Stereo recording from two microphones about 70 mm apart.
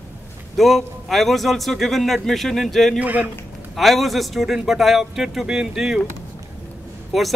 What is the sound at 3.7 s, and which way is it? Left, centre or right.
Speech, centre.